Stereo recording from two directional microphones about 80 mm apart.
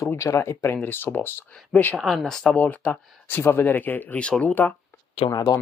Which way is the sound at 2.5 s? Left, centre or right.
Left.